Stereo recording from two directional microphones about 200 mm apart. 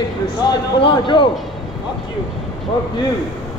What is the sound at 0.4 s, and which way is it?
Speech, 25° left (ahead or behind).